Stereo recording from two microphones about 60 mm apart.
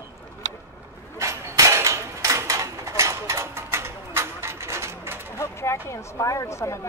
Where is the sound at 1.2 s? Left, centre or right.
Right.